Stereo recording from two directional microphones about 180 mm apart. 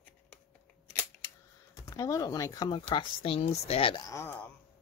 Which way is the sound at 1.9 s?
15° left (ahead or behind).